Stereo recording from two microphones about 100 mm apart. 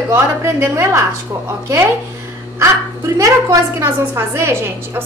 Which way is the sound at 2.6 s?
30° right (ahead or behind).